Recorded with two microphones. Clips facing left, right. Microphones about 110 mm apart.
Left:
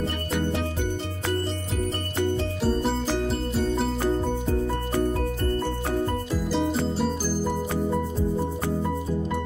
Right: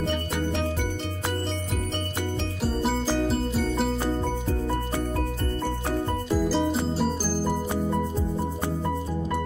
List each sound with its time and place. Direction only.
3.3 s music: centre (ahead or behind)
6.9 s music: centre (ahead or behind)